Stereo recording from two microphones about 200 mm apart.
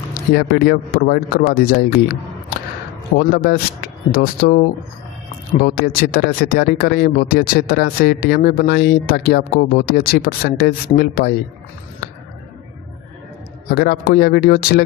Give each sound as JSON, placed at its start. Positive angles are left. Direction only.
{"t": 0.3, "sound": "speech", "side_deg": 50}
{"t": 3.2, "sound": "speech", "side_deg": 50}
{"t": 13.7, "sound": "speech", "side_deg": 50}